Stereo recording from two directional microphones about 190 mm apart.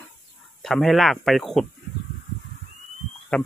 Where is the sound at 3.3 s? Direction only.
5° left (ahead or behind).